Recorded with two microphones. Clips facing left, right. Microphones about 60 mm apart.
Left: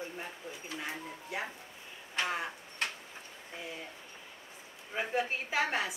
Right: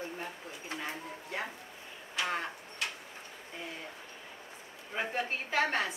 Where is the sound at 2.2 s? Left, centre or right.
Left.